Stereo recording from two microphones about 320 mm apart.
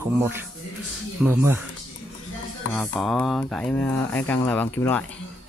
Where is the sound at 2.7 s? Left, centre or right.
Centre.